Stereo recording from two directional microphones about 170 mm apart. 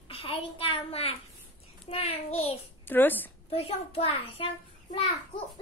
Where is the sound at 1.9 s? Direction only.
35° left (ahead or behind).